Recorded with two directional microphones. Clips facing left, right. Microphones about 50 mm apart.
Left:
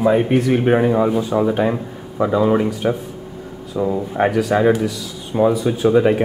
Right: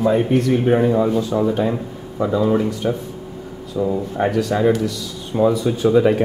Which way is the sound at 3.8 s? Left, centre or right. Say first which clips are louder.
Left 2 dB; left.